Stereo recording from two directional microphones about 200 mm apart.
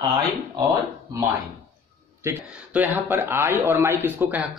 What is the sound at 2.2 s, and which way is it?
Speech, 10° right (ahead or behind).